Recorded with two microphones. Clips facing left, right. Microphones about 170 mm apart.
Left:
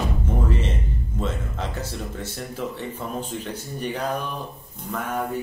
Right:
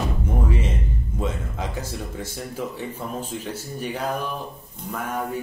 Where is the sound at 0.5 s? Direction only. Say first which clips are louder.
Even; 10° right (ahead or behind).